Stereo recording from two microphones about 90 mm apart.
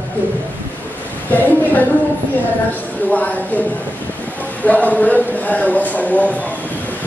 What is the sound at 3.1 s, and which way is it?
Speech, 15° left (ahead or behind).